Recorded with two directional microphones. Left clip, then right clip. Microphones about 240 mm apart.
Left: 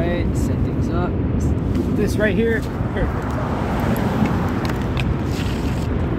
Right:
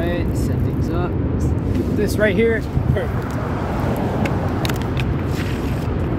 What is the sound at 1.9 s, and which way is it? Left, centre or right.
Speech, centre.